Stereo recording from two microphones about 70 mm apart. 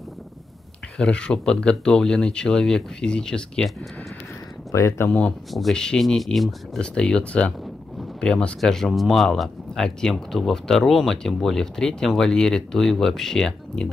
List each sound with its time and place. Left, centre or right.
0.9 s speech: centre
4.7 s speech: left
5.5 s speech: centre
6.8 s speech: centre